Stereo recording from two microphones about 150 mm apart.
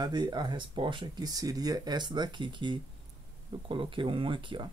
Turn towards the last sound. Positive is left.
turn(degrees=-35)  # may be behind; listen again after turning